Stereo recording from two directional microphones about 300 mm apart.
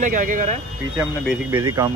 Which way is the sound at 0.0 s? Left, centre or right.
Right.